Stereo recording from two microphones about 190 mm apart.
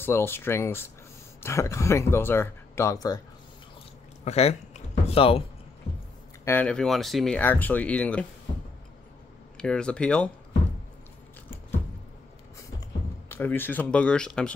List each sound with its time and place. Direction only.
0.0 s speech: 10° left (ahead or behind)
4.2 s a sound: 35° left (ahead or behind)
6.4 s speech: 10° left (ahead or behind)
9.6 s speech: 5° left (ahead or behind)
13.3 s speech: 10° left (ahead or behind)